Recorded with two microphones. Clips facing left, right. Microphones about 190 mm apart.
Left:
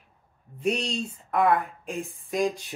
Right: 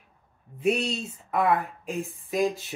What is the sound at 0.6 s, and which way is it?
Speech, 5° right (ahead or behind).